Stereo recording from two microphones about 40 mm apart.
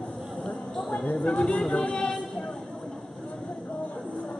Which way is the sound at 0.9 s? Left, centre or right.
Left.